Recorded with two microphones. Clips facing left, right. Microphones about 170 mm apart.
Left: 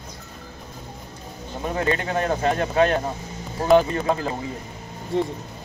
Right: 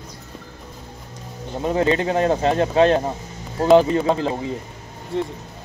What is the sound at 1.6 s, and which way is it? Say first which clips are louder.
Speech: right 5 dB; 25° right (ahead or behind).